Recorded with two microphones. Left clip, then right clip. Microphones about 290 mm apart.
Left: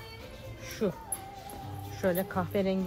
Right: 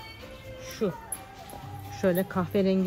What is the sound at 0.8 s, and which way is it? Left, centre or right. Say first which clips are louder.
Speech: right 2 dB; right.